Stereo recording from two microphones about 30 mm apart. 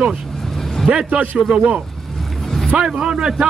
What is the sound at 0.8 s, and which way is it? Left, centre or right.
Vehicle, centre.